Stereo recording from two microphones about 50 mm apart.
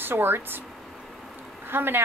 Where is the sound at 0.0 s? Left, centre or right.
Right.